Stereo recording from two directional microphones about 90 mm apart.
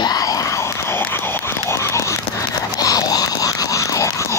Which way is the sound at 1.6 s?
35° left (ahead or behind).